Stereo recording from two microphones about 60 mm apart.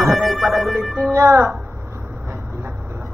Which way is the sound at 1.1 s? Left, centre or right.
Right.